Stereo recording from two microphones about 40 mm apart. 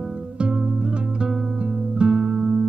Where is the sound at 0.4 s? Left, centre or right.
Right.